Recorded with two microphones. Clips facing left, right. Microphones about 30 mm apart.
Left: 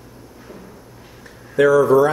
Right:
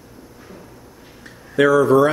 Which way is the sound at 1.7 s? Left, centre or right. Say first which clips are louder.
Even; right.